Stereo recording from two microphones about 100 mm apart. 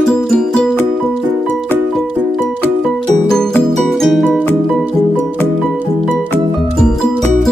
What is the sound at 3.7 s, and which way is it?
Music, centre (ahead or behind).